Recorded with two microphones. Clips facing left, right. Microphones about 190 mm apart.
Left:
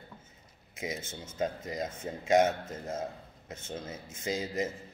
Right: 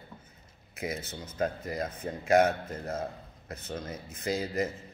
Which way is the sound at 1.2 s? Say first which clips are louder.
Right 2 dB; 25° left (ahead or behind).